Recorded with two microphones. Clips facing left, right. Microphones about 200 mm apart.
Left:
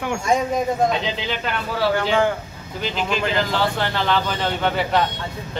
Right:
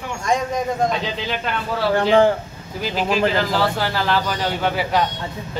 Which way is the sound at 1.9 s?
35° right (ahead or behind).